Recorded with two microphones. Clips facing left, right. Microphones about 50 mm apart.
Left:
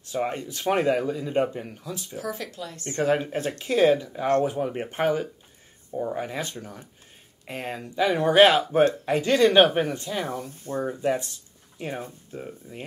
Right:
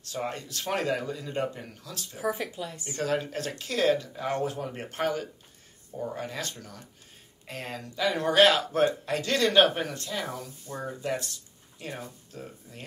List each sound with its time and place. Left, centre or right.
0.0 s a man's voice: centre
2.1 s speech: centre
3.0 s a man's voice: left